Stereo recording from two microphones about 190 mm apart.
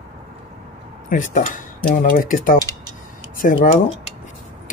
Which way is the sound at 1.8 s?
50° left (ahead or behind).